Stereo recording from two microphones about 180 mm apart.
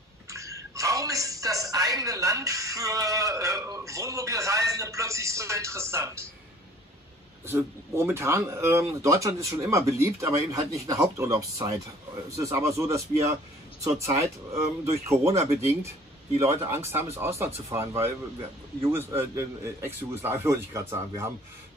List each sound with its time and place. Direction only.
0.3 s a woman's voice: 15° right (ahead or behind)
7.4 s a woman's voice: 15° right (ahead or behind)